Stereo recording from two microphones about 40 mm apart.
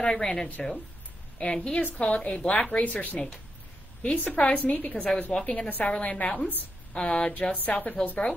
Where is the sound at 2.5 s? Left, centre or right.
Left.